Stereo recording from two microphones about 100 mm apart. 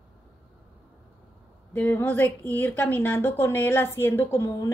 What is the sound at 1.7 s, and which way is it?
A woman's voice, 20° left (ahead or behind).